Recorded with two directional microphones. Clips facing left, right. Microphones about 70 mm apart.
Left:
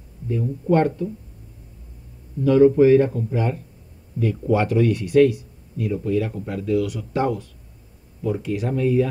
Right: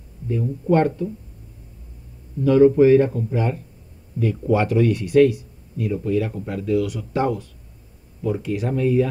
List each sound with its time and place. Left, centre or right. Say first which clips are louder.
0.3 s speech: right 1 dB; right
2.4 s speech: even; right